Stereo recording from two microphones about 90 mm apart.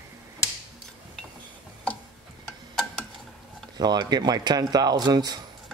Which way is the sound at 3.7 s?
50° right (ahead or behind).